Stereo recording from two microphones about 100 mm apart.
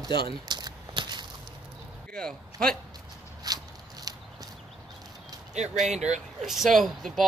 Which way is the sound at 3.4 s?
40° right (ahead or behind).